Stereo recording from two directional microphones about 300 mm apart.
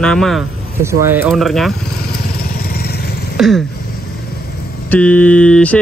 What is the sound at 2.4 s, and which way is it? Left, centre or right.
Vehicle, left.